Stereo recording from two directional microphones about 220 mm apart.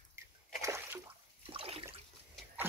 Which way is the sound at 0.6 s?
15° right (ahead or behind).